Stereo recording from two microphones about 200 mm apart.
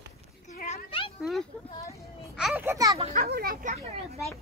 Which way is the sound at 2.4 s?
10° right (ahead or behind).